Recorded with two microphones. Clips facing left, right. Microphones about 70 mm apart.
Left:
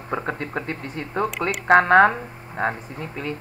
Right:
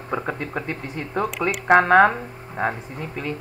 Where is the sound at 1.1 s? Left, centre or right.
Centre.